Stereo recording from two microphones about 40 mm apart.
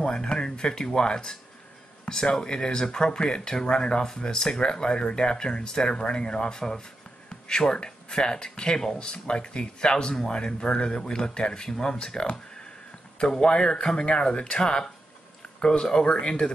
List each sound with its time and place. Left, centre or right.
0.0 s speech: left